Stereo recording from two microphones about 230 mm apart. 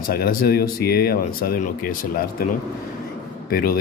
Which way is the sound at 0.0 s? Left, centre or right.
Left.